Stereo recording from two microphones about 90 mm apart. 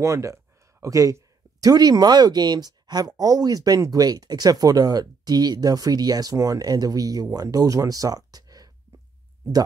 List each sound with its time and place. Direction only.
0.0 s speech: 35° right (ahead or behind)